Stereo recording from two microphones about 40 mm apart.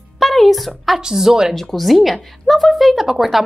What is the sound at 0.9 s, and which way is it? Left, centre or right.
Speech, centre.